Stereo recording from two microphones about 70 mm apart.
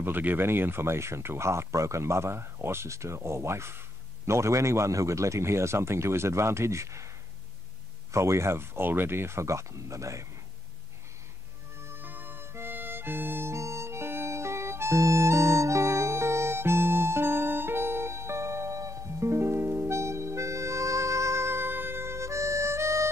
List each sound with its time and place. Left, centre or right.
0.0 s speech: right
8.1 s speech: right
11.8 s harmonica: right